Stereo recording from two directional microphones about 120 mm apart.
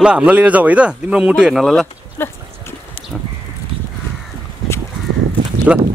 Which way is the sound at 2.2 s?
20° left (ahead or behind).